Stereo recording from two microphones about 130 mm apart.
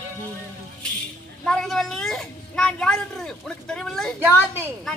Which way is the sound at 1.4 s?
5° left (ahead or behind).